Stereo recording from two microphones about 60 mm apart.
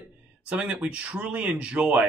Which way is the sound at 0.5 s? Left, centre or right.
Centre.